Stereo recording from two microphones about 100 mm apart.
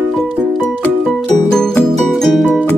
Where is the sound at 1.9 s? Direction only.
5° left (ahead or behind).